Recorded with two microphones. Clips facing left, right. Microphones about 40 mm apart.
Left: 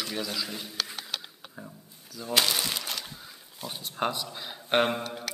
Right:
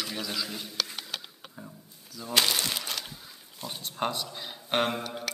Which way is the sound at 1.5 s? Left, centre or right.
Centre.